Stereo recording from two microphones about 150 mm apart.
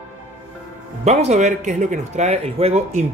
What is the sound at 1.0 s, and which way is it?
Speech, 50° right (ahead or behind).